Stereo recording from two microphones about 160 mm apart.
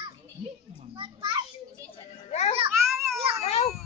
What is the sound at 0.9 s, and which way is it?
Speech, 30° right (ahead or behind).